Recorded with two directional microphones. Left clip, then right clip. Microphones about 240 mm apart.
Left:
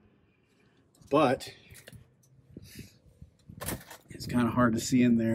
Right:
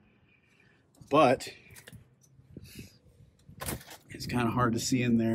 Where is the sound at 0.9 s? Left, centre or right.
Right.